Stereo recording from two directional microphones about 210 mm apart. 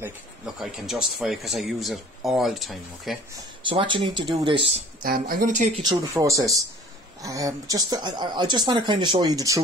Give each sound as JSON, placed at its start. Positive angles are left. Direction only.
{"t": 0.6, "sound": "speech", "side_deg": 0}
{"t": 3.6, "sound": "speech", "side_deg": -25}
{"t": 5.1, "sound": "speech", "side_deg": -40}
{"t": 5.9, "sound": "speech", "side_deg": -15}